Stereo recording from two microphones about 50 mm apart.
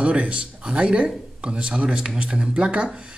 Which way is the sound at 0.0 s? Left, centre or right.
Right.